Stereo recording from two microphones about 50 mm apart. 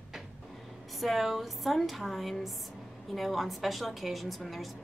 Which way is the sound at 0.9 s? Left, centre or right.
Centre.